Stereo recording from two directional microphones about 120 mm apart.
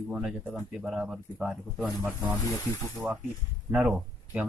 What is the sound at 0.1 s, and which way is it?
Speech, 5° right (ahead or behind).